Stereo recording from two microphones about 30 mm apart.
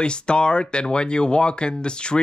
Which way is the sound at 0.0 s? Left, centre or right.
Left.